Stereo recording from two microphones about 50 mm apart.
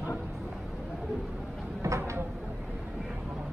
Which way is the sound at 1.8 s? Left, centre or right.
Right.